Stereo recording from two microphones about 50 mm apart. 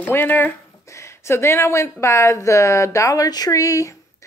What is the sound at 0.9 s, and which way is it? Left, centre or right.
A woman's voice, left.